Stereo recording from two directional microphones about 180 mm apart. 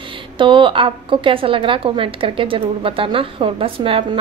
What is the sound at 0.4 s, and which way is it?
A woman's voice, 30° right (ahead or behind).